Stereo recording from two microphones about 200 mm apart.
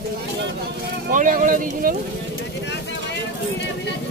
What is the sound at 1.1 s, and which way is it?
Speech, 40° right (ahead or behind).